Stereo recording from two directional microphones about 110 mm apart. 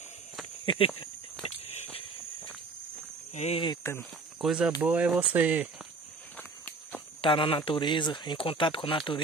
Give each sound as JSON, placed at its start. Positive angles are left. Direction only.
{"t": 0.7, "sound": "speech", "side_deg": 55}
{"t": 3.3, "sound": "speech", "side_deg": 70}
{"t": 3.8, "sound": "speech", "side_deg": 25}
{"t": 4.4, "sound": "speech", "side_deg": -5}
{"t": 6.3, "sound": "walk", "side_deg": 15}
{"t": 7.2, "sound": "speech", "side_deg": 55}